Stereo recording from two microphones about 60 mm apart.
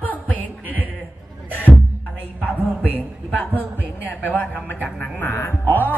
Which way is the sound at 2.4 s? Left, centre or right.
Left.